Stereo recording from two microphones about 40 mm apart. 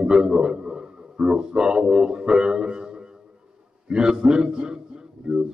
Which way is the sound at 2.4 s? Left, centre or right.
Centre.